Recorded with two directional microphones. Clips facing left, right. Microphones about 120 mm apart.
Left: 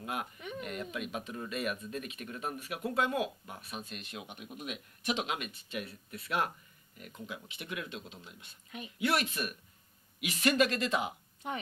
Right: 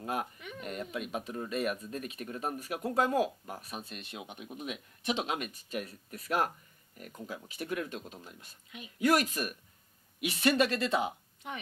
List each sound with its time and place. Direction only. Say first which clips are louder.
0.0 s speech: right 3 dB; 35° right (ahead or behind)
8.7 s a woman's voice: left 4 dB; 45° left (ahead or behind)
9.0 s speech: right 4 dB; 40° right (ahead or behind)